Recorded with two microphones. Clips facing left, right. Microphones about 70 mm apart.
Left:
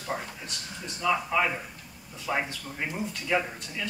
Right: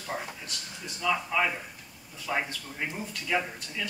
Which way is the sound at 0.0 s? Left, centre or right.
Centre.